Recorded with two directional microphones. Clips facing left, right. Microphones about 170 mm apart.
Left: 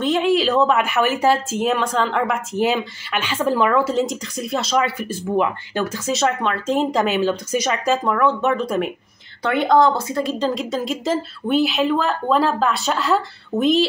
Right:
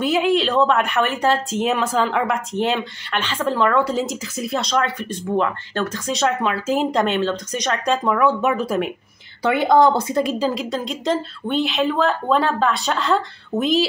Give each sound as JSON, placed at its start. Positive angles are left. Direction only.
{"t": 0.0, "sound": "a woman's voice", "side_deg": 0}
{"t": 9.9, "sound": "speech", "side_deg": -20}
{"t": 10.4, "sound": "a woman's voice", "side_deg": 0}